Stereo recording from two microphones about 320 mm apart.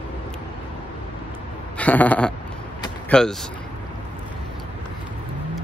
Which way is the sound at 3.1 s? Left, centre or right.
Centre.